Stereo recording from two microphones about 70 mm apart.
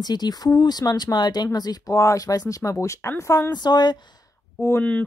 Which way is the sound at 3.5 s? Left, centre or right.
Left.